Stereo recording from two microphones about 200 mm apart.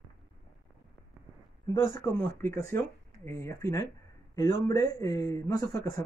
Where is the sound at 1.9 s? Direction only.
10° left (ahead or behind).